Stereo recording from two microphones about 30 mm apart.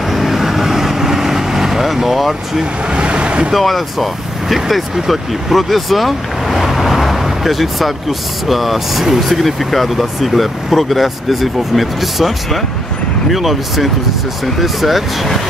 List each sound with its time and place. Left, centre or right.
0.1 s vehicle: centre
2.9 s vehicle: right
3.5 s speech: centre